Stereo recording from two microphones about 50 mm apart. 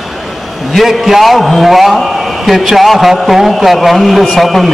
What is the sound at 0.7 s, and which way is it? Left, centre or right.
A man's voice, centre.